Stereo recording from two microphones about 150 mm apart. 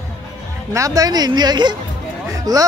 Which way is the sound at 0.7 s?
20° right (ahead or behind).